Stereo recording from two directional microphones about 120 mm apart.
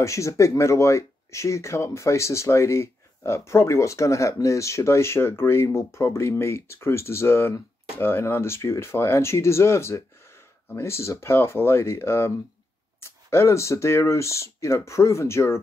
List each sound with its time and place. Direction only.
0.0 s speech: 25° left (ahead or behind)